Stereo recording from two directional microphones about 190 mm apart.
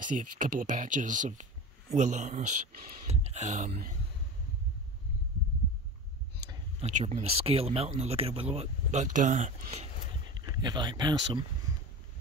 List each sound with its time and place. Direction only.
0.0 s speech: 45° right (ahead or behind)
6.4 s a sound: 20° right (ahead or behind)
6.9 s speech: 40° right (ahead or behind)
10.4 s speech: 20° right (ahead or behind)